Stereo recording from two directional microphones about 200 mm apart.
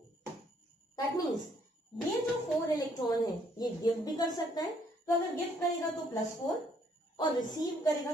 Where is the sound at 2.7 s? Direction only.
20° left (ahead or behind).